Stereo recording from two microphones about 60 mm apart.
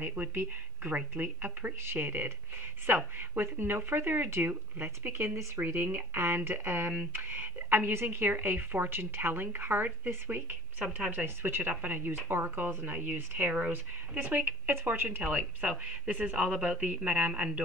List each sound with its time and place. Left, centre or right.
0.0 s speech: right
14.7 s speech: right
15.0 s speech: right